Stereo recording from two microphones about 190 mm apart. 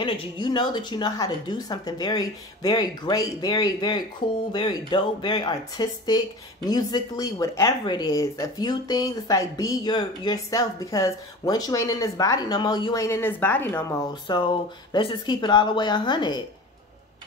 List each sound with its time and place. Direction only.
0.0 s speech: 25° left (ahead or behind)
14.2 s speech: 25° left (ahead or behind)